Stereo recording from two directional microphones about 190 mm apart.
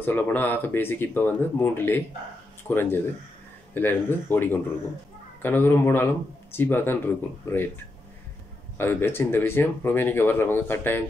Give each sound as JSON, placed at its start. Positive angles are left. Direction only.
{"t": 0.0, "sound": "speech", "side_deg": 10}
{"t": 8.7, "sound": "speech", "side_deg": 10}